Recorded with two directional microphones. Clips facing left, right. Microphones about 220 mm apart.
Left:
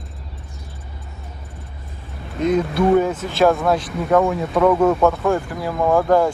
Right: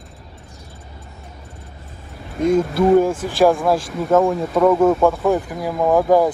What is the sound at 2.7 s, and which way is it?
Speech, centre (ahead or behind).